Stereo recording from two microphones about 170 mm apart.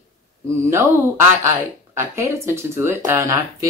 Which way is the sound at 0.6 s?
15° right (ahead or behind).